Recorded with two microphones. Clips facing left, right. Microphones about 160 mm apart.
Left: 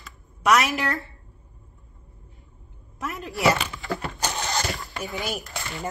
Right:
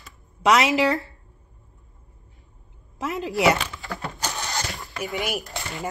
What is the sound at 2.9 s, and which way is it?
Speech, 20° right (ahead or behind).